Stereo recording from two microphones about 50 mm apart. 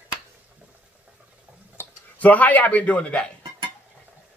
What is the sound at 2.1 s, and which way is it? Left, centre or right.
A man's voice, left.